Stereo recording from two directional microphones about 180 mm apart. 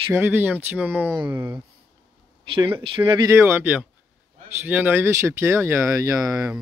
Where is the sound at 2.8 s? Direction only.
30° right (ahead or behind).